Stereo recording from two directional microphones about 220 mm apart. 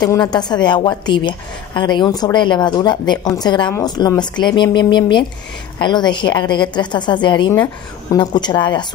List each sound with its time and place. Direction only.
0.0 s a woman's voice: 20° left (ahead or behind)